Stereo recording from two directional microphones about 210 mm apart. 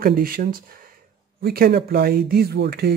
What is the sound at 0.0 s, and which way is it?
Speech, 45° right (ahead or behind).